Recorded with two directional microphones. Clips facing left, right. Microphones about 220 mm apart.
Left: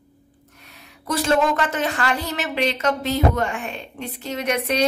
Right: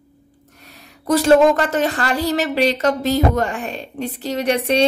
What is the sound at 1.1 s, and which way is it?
A woman's voice, 40° right (ahead or behind).